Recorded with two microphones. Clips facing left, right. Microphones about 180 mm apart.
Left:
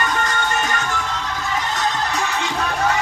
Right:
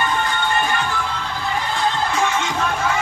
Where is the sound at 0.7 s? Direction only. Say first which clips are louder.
Right 1 dB; 40° left (ahead or behind).